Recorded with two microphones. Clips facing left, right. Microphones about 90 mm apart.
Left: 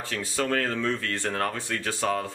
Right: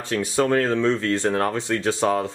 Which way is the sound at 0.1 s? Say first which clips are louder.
Right 8 dB; 20° right (ahead or behind).